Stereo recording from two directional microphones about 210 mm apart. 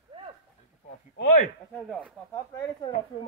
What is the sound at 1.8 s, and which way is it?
Speech, 5° left (ahead or behind).